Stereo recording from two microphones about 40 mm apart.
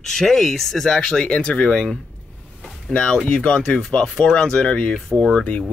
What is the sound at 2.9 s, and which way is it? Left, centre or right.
Speech, left.